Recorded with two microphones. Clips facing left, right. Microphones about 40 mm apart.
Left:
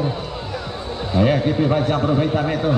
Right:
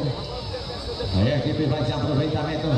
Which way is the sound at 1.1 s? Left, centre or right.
Left.